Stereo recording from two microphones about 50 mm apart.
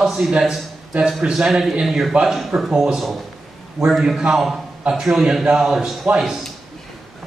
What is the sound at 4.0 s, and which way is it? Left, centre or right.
A man's voice, centre.